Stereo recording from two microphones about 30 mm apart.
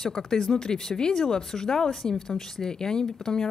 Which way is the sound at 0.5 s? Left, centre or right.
Left.